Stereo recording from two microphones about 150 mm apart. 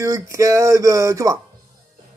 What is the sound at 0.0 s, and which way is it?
Speech, 20° right (ahead or behind).